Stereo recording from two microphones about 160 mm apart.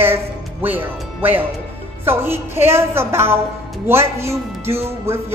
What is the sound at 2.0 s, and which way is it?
Music, 15° right (ahead or behind).